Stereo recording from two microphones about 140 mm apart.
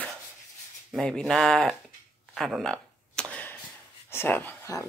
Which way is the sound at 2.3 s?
Centre (ahead or behind).